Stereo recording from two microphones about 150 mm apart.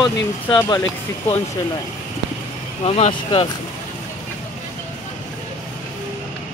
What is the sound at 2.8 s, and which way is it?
Speech, 40° left (ahead or behind).